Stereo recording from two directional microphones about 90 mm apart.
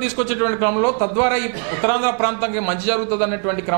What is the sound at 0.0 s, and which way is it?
A man's voice, 15° right (ahead or behind).